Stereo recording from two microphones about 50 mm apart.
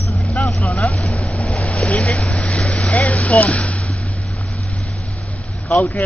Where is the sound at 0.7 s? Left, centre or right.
Centre.